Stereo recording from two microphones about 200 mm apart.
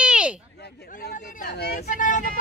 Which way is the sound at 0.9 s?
40° left (ahead or behind).